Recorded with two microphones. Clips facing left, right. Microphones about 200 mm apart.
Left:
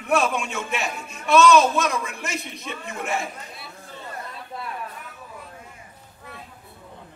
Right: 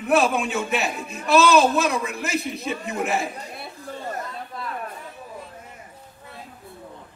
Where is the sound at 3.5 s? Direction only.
50° right (ahead or behind).